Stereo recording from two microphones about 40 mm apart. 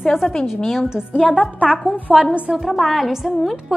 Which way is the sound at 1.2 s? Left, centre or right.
Left.